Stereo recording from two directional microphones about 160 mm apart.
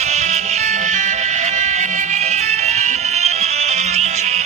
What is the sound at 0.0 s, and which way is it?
Music, 45° right (ahead or behind).